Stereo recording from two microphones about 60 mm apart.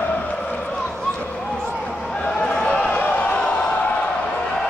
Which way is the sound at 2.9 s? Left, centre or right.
Left.